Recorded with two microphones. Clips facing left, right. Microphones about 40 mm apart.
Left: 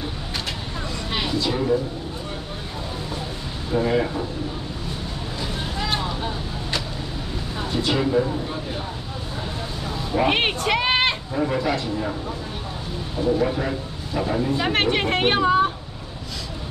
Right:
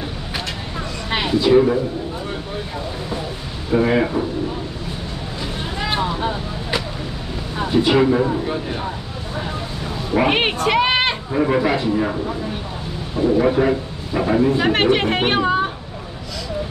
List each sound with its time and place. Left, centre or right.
1.1 s speech: right
3.7 s speech: right
5.8 s vehicle: centre
7.5 s speech: right
10.2 s speech: centre
11.3 s speech: right
13.4 s a man's voice: right
14.6 s speech: centre